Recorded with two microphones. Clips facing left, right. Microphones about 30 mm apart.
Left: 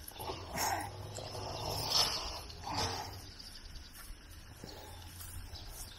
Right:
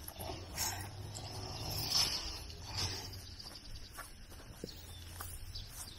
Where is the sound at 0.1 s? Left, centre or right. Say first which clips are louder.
Left 5 dB; centre.